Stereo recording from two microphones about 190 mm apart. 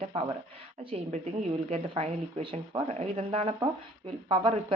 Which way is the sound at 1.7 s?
35° right (ahead or behind).